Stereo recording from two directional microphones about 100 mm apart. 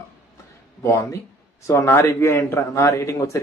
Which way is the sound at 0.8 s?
30° left (ahead or behind).